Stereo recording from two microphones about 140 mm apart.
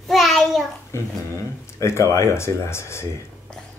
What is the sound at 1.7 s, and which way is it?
Speech, 20° left (ahead or behind).